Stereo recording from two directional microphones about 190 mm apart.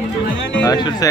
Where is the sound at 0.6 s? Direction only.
20° left (ahead or behind).